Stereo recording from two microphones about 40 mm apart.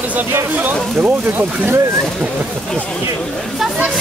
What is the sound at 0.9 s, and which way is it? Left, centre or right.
Speech, right.